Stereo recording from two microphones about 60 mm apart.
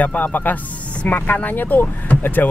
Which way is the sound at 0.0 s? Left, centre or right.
Left.